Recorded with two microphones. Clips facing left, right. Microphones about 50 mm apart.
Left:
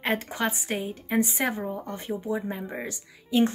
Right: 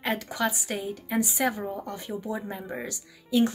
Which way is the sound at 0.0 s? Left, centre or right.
Left.